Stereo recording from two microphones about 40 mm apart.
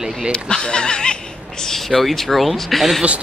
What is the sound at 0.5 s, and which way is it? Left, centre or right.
Speech, left.